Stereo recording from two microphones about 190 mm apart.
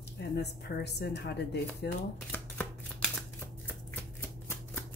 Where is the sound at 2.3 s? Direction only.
5° left (ahead or behind).